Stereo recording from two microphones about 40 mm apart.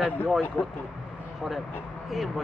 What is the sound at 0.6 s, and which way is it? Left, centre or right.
Speech, left.